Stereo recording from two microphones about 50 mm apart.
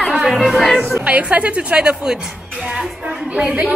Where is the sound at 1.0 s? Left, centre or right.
Right.